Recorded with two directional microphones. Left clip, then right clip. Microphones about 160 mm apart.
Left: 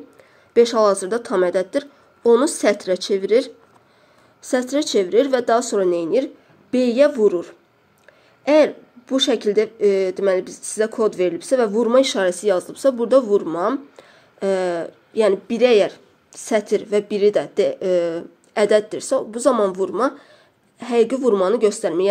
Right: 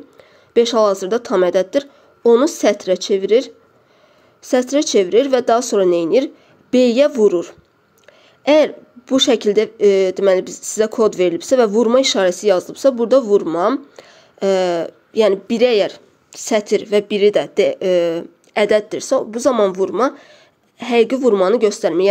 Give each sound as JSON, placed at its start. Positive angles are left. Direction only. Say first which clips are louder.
{"t": 0.2, "sound": "speech", "louder": "even", "side_deg": -20}